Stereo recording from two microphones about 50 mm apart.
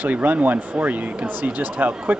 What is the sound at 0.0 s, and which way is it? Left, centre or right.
Speech, right.